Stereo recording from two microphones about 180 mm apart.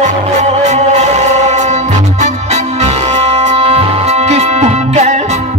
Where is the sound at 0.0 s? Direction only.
40° right (ahead or behind).